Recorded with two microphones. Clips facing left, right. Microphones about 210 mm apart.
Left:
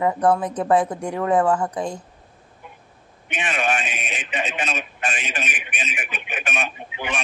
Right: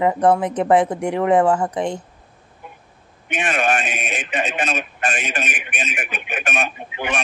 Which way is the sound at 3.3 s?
45° right (ahead or behind).